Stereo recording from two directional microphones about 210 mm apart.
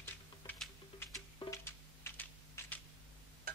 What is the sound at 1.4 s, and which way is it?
Typing, 15° left (ahead or behind).